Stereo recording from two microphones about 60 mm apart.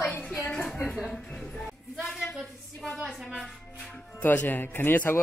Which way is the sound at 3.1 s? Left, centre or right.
Centre.